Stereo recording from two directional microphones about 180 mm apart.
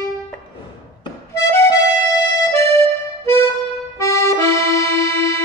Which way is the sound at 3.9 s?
15° left (ahead or behind).